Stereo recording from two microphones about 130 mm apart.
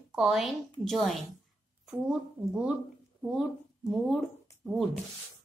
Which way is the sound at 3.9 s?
Centre (ahead or behind).